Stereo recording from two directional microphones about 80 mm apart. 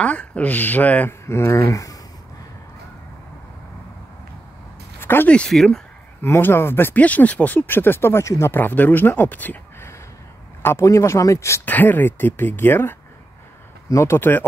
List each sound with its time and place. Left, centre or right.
0.0 s speech: centre
1.2 s speech: left
5.0 s a sound: left
5.3 s speech: centre
6.2 s speech: left
8.5 s speech: left
10.6 s speech: left
11.6 s speech: left